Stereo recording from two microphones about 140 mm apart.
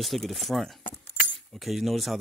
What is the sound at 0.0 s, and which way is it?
Speech, centre (ahead or behind).